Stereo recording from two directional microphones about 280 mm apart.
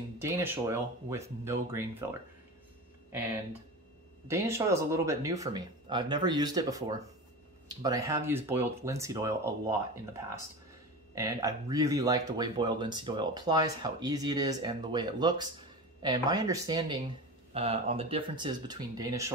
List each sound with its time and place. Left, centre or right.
0.2 s speech: centre
4.3 s speech: centre